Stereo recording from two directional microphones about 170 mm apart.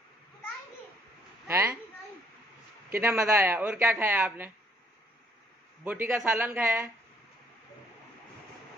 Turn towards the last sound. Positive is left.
turn(degrees=-15)  # may be behind; listen again after turning